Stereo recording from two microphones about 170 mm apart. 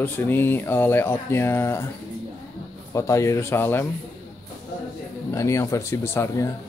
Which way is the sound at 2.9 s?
20° left (ahead or behind).